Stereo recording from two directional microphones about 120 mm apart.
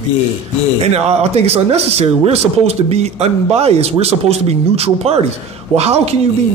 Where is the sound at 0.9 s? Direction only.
60° right (ahead or behind).